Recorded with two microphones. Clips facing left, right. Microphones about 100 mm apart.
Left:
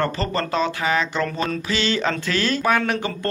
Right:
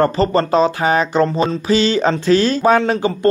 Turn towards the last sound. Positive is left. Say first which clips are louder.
# right 7 dB
turn(degrees=-25)  # may be behind; listen again after turning